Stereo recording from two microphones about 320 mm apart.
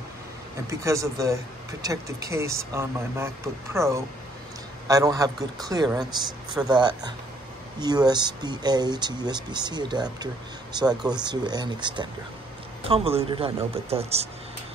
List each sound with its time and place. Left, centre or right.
0.7 s speech: centre